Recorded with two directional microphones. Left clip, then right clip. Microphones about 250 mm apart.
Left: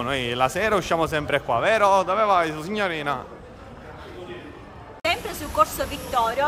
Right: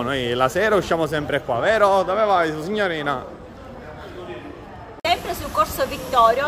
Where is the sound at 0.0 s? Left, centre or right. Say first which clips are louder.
Right 2 dB; centre.